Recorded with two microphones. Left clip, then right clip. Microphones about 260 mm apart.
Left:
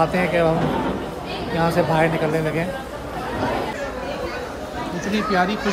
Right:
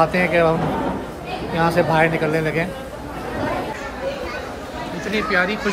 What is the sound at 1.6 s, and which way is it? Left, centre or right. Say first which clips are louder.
A man's voice: right 2 dB; centre.